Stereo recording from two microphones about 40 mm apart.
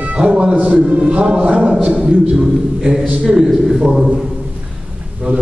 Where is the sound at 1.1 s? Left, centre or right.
Right.